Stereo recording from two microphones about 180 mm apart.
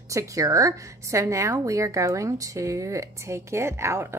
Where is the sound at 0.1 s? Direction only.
15° right (ahead or behind).